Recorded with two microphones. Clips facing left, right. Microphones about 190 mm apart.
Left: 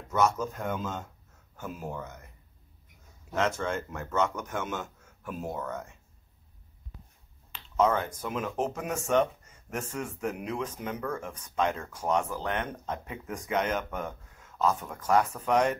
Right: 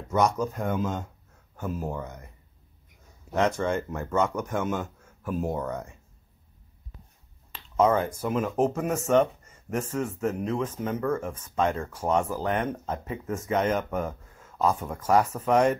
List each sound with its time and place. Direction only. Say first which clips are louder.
0.1 s speech: right 2 dB; 15° right (ahead or behind)
3.3 s speech: right 4 dB; 10° right (ahead or behind)
7.7 s speech: right 3 dB; 10° right (ahead or behind)